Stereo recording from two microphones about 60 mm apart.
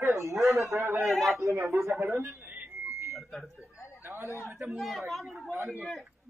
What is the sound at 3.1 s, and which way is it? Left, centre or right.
Smoke detector, centre.